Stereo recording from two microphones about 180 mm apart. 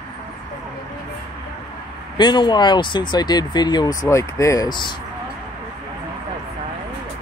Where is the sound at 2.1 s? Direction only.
25° left (ahead or behind).